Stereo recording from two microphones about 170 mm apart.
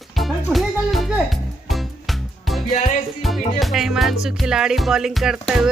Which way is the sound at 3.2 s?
Centre (ahead or behind).